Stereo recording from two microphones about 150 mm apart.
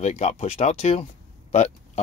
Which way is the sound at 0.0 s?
45° left (ahead or behind).